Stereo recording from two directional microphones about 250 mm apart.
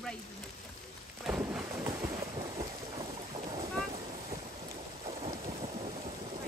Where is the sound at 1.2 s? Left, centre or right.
Centre.